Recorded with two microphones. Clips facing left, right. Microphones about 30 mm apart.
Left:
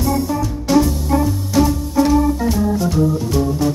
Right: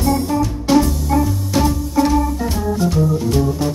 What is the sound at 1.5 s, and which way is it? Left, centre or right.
Music, centre.